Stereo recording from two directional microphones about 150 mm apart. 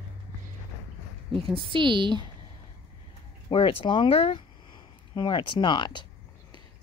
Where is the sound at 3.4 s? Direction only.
35° left (ahead or behind).